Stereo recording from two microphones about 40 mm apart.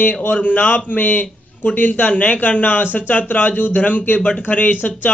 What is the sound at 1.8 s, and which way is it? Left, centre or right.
A man's voice, left.